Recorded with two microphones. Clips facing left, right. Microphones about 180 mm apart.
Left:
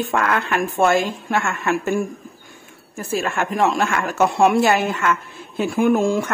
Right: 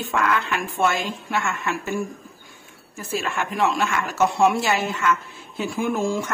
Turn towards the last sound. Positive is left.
turn(degrees=60)  # may be behind; listen again after turning